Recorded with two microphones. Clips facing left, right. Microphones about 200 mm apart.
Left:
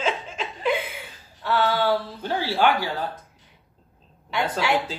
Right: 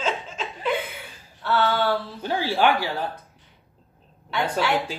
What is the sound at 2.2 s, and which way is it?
Speech, 15° right (ahead or behind).